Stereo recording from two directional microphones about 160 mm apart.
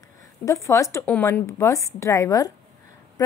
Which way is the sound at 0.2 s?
20° left (ahead or behind).